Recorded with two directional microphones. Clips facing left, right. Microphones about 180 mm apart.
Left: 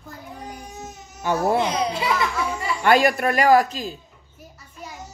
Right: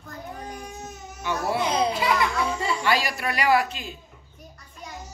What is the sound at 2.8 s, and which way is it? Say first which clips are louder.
Speech: left 11 dB; 55° left (ahead or behind).